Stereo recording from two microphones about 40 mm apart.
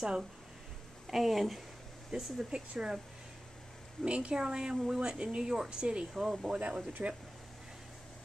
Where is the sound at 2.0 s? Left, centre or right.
Centre.